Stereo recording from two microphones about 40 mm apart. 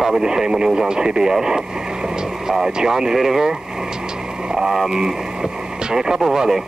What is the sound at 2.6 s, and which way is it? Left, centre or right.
Speech, centre.